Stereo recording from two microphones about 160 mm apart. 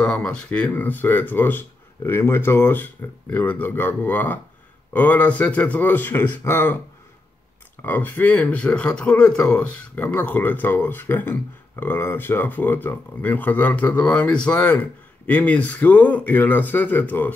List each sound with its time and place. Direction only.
0.0 s speech: 5° left (ahead or behind)
7.8 s speech: 10° left (ahead or behind)